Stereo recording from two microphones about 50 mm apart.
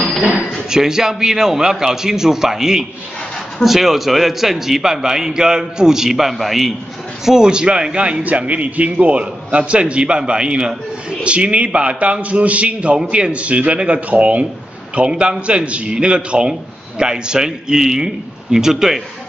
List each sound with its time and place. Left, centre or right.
0.7 s a man's voice: centre
7.2 s a man's voice: centre